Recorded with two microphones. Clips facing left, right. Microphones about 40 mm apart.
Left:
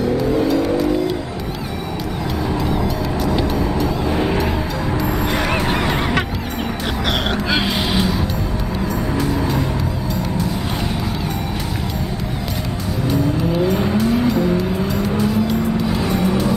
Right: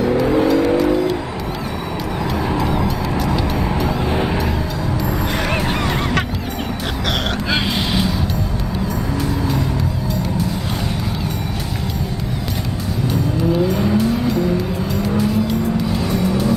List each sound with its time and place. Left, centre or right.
0.1 s vehicle: centre
2.5 s music: centre
5.5 s honk: centre
7.5 s vehicle: centre
13.5 s vehicle: centre
15.0 s music: centre
15.9 s music: centre